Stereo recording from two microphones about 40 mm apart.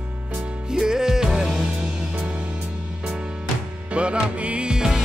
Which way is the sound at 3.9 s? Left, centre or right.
Right.